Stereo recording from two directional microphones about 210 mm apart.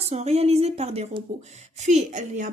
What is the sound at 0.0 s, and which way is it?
A woman's voice, 30° right (ahead or behind).